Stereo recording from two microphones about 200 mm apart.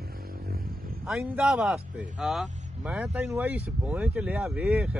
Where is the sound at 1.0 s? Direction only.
Centre (ahead or behind).